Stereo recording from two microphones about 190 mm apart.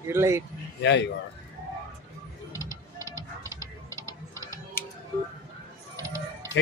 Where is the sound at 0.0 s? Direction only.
15° right (ahead or behind).